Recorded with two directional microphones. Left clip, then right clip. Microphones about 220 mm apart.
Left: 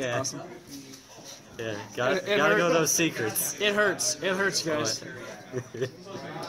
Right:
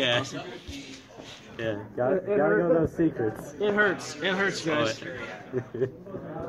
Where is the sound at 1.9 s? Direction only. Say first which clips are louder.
Even; 35° left (ahead or behind).